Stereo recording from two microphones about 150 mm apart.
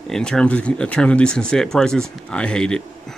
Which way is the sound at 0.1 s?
5° left (ahead or behind).